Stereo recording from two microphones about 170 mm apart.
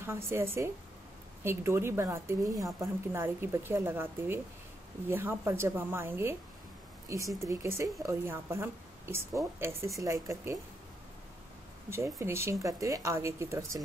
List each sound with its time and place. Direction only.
0.0 s a woman's voice: 15° right (ahead or behind)
11.9 s a woman's voice: 15° right (ahead or behind)